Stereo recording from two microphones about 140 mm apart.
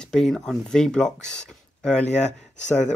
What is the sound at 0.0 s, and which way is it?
Speech, 5° left (ahead or behind).